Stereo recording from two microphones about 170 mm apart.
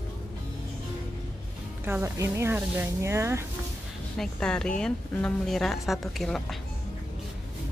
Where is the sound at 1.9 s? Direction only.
15° right (ahead or behind).